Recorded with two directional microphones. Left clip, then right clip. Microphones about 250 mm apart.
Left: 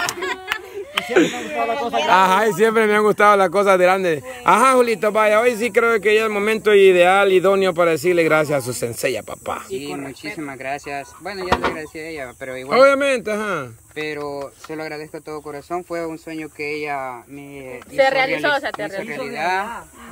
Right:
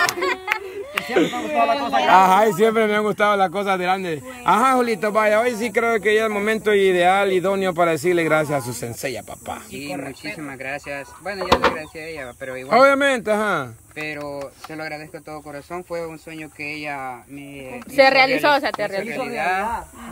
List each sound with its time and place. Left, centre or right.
0.2 s a sound: centre
1.0 s speech: centre
1.6 s a man's voice: centre
2.1 s speech: centre
10.4 s speech: left
12.6 s speech: centre
13.9 s speech: left
17.9 s a woman's voice: right
19.0 s speech: left